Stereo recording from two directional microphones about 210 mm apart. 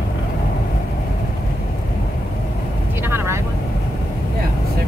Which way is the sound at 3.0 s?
10° right (ahead or behind).